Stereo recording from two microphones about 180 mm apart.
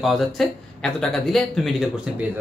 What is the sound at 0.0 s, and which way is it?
A man's voice, centre (ahead or behind).